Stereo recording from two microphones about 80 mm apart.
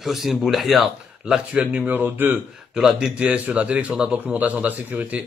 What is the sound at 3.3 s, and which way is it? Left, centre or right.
A man's voice, centre.